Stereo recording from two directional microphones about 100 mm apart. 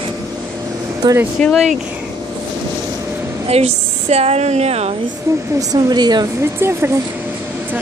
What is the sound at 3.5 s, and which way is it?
Speech, 90° right.